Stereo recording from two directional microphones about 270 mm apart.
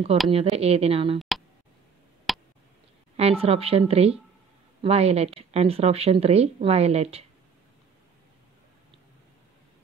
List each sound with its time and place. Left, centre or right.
0.3 s speech: right
2.3 s a sound: centre
3.2 s speech: right